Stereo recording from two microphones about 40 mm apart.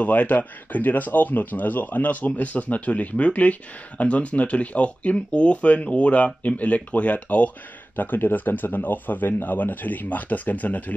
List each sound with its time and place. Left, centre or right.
0.0 s a man's voice: left
7.9 s a man's voice: left